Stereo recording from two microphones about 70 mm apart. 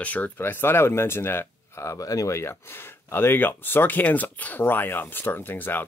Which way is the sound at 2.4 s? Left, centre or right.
Left.